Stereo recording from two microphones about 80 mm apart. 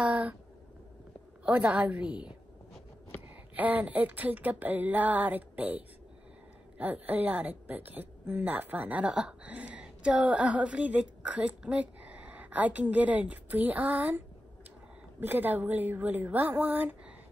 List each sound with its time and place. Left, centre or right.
0.0 s a sound: centre
1.4 s a woman's voice: centre
3.5 s a woman's voice: right